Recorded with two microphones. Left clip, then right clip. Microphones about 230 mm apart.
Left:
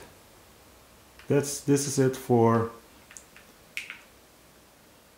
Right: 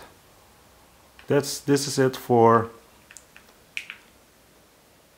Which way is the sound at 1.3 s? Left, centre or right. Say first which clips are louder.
Right 3 dB; centre.